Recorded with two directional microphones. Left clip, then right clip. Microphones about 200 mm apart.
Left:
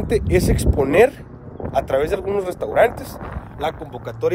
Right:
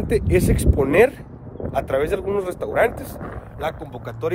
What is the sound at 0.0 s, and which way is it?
Speech, 10° left (ahead or behind).